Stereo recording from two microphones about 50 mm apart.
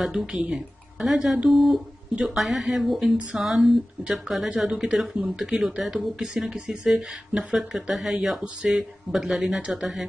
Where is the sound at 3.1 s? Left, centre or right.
Right.